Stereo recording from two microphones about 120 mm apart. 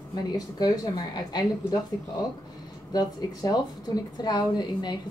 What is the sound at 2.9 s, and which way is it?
A woman's voice, 35° left (ahead or behind).